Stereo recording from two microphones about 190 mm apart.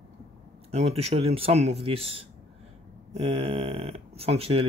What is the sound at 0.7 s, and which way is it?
Speech, 30° right (ahead or behind).